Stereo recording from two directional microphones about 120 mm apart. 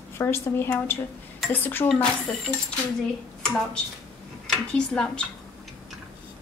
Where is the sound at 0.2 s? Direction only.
20° left (ahead or behind).